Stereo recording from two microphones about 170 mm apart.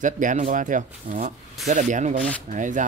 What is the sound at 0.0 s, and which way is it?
Speech, 50° right (ahead or behind).